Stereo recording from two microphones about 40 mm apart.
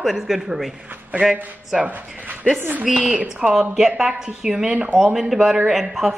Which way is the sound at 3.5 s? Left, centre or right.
Centre.